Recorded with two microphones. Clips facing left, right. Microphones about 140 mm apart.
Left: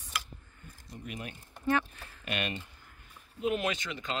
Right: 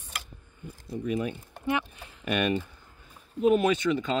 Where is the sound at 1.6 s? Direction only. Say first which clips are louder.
Even; 15° right (ahead or behind).